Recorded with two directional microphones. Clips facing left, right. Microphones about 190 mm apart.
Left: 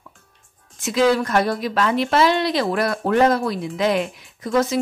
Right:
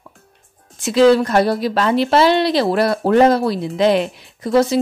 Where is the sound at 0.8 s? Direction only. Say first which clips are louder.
Right 6 dB; 30° right (ahead or behind).